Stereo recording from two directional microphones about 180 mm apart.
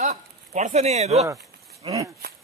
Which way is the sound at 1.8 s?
20° right (ahead or behind).